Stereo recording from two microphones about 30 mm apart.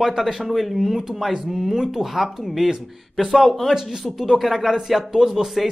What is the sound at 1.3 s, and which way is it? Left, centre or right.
Speech, centre.